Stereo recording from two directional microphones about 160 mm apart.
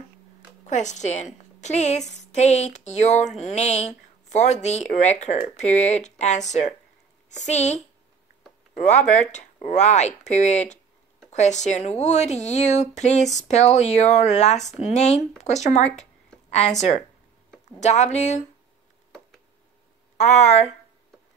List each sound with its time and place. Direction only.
0.7 s a woman's voice: 50° left (ahead or behind)
20.2 s a woman's voice: 45° left (ahead or behind)